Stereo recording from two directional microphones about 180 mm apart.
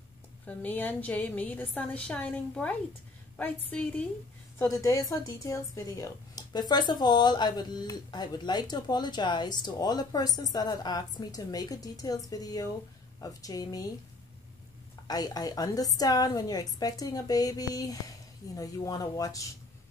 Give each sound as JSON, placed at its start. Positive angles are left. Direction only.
{"t": 0.5, "sound": "a woman's voice", "side_deg": 10}
{"t": 15.0, "sound": "speech", "side_deg": 20}